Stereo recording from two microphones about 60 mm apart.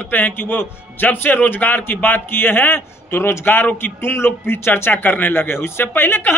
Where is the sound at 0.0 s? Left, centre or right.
Left.